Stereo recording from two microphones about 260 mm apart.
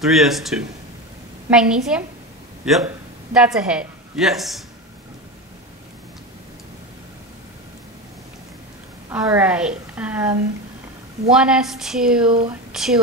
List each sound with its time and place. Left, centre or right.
0.0 s a woman's voice: centre
9.1 s a woman's voice: centre
11.2 s a woman's voice: centre
12.3 s speech: centre
12.7 s a woman's voice: centre